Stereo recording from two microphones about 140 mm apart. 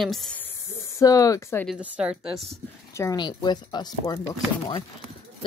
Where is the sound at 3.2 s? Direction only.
30° left (ahead or behind).